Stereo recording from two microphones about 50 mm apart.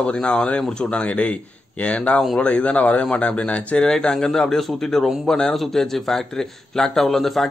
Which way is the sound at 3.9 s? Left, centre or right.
Centre.